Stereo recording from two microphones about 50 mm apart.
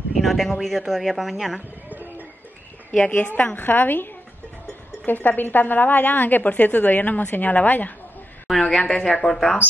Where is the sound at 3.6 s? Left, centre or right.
Left.